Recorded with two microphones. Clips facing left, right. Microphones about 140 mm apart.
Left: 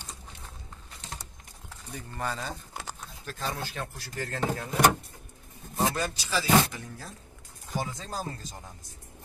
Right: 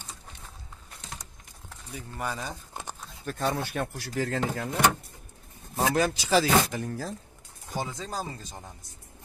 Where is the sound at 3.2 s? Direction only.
55° right (ahead or behind); by 4.6 s 90° right.